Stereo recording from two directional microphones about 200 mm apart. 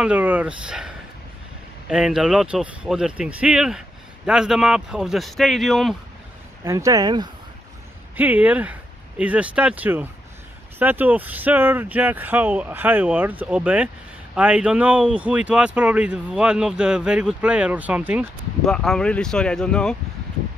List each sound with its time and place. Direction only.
0.0 s speech: 10° right (ahead or behind)
6.6 s speech: 15° right (ahead or behind)
8.2 s speech: 10° right (ahead or behind)